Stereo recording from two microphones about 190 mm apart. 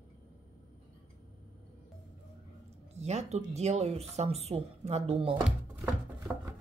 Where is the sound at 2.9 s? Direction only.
35° right (ahead or behind).